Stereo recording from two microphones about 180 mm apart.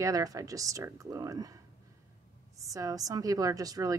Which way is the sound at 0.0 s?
20° right (ahead or behind).